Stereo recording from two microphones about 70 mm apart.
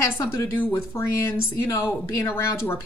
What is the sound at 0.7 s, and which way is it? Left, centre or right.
A woman's voice, left.